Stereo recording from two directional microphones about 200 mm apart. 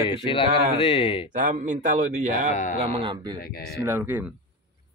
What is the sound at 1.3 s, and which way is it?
A man's voice, 40° right (ahead or behind).